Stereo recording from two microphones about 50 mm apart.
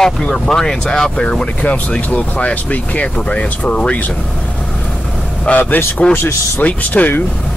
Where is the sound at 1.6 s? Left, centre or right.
Left.